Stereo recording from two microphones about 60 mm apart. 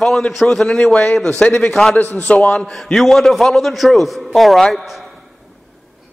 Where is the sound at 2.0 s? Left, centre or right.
Left.